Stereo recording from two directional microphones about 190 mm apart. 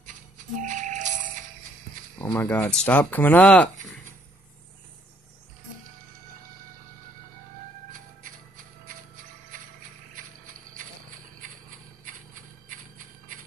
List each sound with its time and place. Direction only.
0.6 s music: 40° right (ahead or behind)
2.3 s speech: 10° left (ahead or behind)
8.8 s a sound: 45° right (ahead or behind)